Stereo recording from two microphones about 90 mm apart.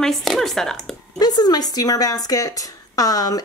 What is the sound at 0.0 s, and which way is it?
Speech, centre (ahead or behind).